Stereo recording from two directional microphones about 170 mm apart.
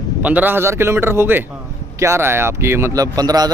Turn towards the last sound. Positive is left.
turn(degrees=-20)  # may be behind; listen again after turning